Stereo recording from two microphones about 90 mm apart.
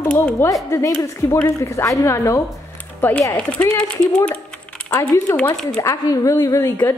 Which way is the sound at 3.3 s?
10° left (ahead or behind).